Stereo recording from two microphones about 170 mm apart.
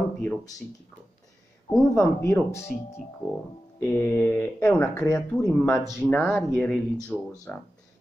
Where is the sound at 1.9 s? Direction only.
20° left (ahead or behind).